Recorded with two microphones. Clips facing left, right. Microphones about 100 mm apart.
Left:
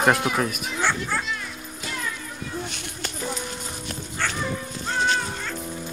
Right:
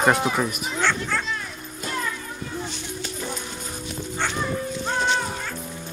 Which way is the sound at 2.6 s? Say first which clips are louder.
Right 2 dB; 60° left (ahead or behind).